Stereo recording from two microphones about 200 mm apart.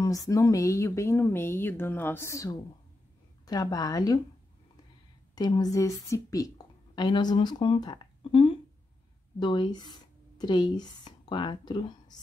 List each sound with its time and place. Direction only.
0.0 s a woman's voice: 15° left (ahead or behind)
5.3 s speech: 20° left (ahead or behind)